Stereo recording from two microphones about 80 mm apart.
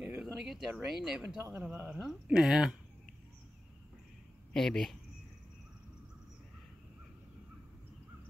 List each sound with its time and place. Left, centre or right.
0.0 s speech: centre
1.5 s speech: centre
1.9 s speech: centre
4.5 s speech: centre